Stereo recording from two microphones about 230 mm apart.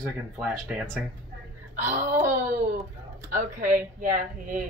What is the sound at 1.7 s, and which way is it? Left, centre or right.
Speech, right.